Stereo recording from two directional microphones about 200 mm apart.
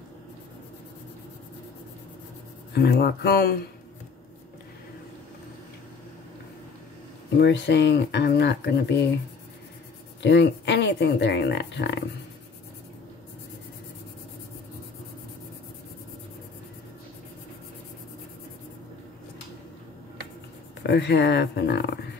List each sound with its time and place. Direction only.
2.7 s speech: 50° left (ahead or behind)
7.3 s speech: 60° left (ahead or behind)
10.2 s speech: 60° left (ahead or behind)
20.8 s speech: 60° left (ahead or behind)